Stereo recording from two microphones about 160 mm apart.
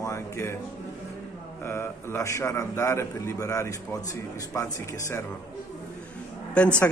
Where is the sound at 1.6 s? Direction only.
15° left (ahead or behind).